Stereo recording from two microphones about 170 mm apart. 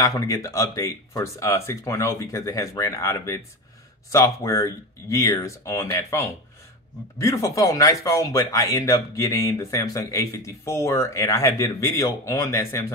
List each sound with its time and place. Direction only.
0.0 s speech: 20° left (ahead or behind)